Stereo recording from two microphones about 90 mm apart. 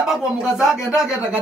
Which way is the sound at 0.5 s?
5° right (ahead or behind).